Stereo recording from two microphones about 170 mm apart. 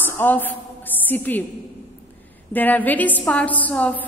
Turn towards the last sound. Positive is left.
turn(degrees=10)  # may be behind; listen again after turning